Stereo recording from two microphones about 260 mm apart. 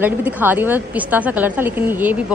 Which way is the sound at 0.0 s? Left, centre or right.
Centre.